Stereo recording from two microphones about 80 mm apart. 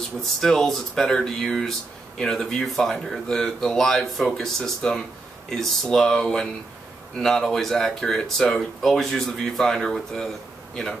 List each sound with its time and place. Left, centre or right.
0.4 s speech: centre